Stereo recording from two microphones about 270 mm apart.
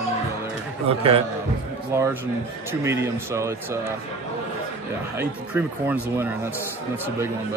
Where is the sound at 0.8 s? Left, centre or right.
Right.